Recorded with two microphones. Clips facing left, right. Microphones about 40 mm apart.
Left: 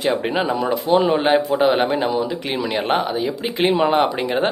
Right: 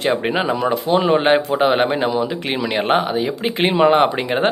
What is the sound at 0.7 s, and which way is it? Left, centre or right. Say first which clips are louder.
Speech: left 2 dB; right.